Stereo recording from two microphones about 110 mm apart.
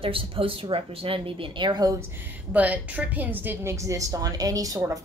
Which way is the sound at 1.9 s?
20° right (ahead or behind).